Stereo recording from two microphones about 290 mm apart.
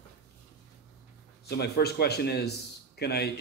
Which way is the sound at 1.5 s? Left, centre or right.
Left.